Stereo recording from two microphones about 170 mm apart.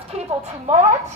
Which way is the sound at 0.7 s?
45° right (ahead or behind).